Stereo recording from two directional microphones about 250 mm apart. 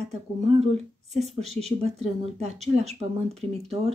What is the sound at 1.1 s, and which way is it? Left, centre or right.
Speech, centre.